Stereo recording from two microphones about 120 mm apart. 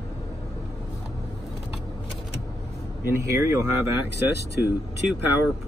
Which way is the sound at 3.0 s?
25° right (ahead or behind).